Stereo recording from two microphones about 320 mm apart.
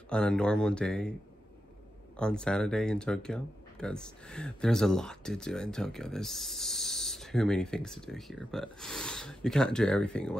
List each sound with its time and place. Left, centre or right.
0.1 s speech: centre
2.1 s speech: centre